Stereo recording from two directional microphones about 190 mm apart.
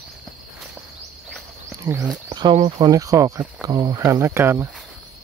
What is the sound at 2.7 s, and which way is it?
Speech, 20° right (ahead or behind).